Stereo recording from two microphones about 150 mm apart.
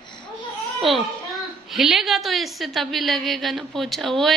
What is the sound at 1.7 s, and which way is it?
A woman's voice, centre (ahead or behind).